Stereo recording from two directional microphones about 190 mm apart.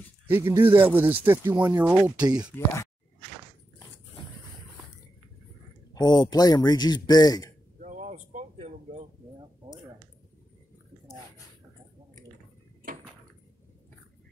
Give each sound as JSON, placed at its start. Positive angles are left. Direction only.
{"t": 0.3, "sound": "speech", "side_deg": -10}
{"t": 5.9, "sound": "speech", "side_deg": 20}
{"t": 7.8, "sound": "a sound", "side_deg": -40}